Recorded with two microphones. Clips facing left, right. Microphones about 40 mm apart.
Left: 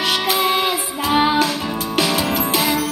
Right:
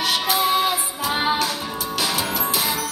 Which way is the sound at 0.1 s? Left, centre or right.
Left.